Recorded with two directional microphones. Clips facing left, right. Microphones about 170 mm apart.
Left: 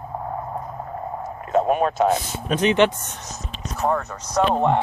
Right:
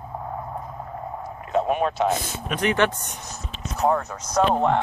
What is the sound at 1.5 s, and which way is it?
Speech, 45° left (ahead or behind).